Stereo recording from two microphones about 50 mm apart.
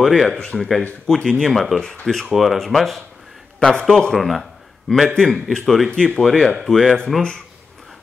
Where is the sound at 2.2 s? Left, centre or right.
Centre.